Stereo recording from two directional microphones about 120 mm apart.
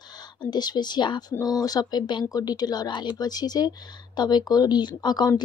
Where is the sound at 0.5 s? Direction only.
35° left (ahead or behind).